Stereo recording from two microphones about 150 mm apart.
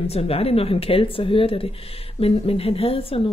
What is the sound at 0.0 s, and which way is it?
Speech, 40° left (ahead or behind).